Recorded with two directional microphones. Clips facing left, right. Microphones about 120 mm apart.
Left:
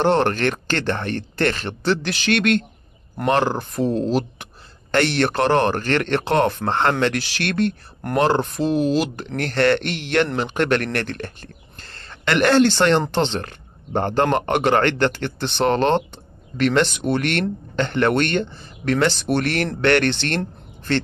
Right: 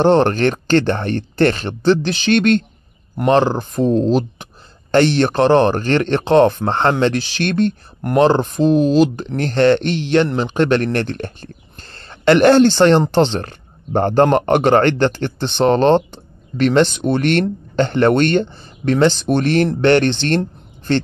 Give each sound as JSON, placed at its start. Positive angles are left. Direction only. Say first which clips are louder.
{"t": 0.0, "sound": "speech", "louder": "right 5 dB", "side_deg": -30}